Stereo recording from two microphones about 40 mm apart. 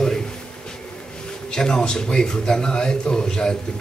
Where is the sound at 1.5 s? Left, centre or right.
Centre.